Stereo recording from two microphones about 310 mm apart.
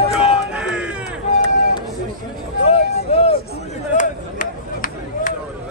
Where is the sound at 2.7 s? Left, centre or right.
Centre.